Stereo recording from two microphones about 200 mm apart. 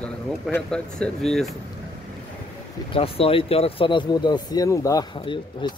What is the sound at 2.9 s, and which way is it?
Speech, 30° left (ahead or behind).